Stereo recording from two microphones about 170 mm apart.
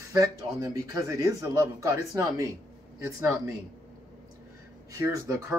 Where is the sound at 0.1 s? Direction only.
20° right (ahead or behind).